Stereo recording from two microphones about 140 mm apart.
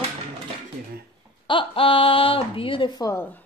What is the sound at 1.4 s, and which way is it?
Speech, 40° left (ahead or behind).